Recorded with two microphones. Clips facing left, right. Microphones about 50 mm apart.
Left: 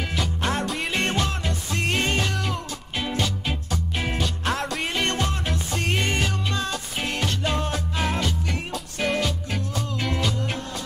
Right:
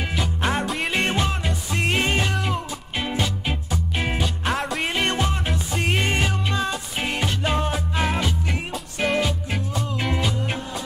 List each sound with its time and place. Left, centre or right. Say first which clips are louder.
0.0 s music: right 2 dB; centre
0.7 s music: right 2 dB; centre
0.9 s music: right 2 dB; centre